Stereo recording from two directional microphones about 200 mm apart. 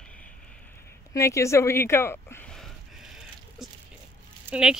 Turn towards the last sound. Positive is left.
turn(degrees=-5)  # may be behind; listen again after turning